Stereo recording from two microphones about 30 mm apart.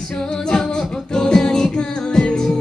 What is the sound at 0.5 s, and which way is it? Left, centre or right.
Singing, left.